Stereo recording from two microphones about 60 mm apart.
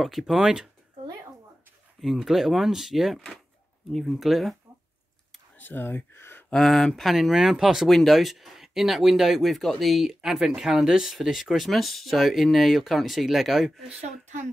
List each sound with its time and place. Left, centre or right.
0.2 s speech: centre
2.0 s speech: centre
5.6 s speech: left
6.5 s speech: centre